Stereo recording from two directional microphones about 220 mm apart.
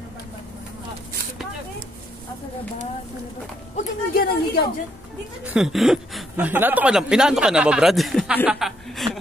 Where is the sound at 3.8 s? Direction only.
45° left (ahead or behind).